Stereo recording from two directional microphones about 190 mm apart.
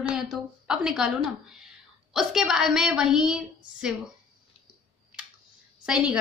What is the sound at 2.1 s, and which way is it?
A woman's voice, centre (ahead or behind).